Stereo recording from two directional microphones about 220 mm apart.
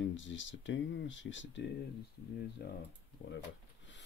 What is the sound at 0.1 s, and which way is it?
Speech, 55° left (ahead or behind).